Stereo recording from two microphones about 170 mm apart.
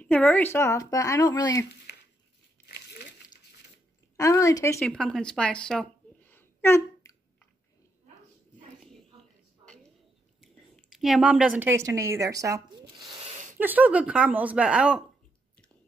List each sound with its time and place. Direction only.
0.0 s speech: 5° left (ahead or behind); by 1.7 s 20° left (ahead or behind)
1.9 s a sound: 80° left
2.6 s crumpling: 75° left (ahead or behind)
4.2 s speech: 20° left (ahead or behind)
4.7 s speech: 5° left (ahead or behind)
10.4 s speech: centre (ahead or behind)